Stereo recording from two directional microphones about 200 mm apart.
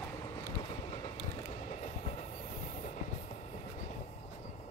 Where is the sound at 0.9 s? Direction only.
30° left (ahead or behind).